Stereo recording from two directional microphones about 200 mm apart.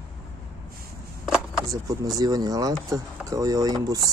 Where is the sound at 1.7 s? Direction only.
15° right (ahead or behind).